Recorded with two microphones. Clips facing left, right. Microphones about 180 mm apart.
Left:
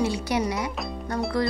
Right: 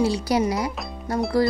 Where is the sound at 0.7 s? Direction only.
Centre (ahead or behind).